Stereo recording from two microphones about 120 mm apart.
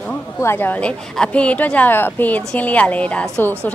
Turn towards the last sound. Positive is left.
turn(degrees=10)  # may be behind; listen again after turning